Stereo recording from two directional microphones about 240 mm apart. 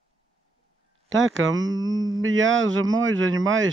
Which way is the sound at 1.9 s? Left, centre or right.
Centre.